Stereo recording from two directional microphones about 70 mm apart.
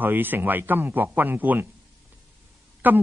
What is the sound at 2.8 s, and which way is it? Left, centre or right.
Speech, right.